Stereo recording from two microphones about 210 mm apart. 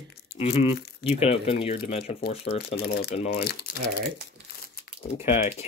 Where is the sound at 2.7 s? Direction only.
50° left (ahead or behind).